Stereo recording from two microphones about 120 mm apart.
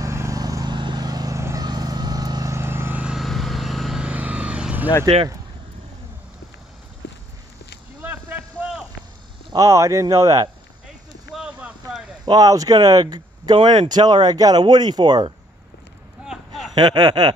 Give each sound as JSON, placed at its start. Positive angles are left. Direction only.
{"t": 0.0, "sound": "vehicle", "side_deg": -25}
{"t": 5.0, "sound": "speech", "side_deg": -40}
{"t": 8.0, "sound": "a sound", "side_deg": -10}
{"t": 9.5, "sound": "speech", "side_deg": -25}
{"t": 11.3, "sound": "boat", "side_deg": -5}
{"t": 12.3, "sound": "speech", "side_deg": -30}
{"t": 16.3, "sound": "a sound", "side_deg": -5}
{"t": 16.7, "sound": "speech", "side_deg": -35}